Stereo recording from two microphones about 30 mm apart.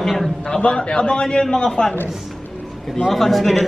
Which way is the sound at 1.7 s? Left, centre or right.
Centre.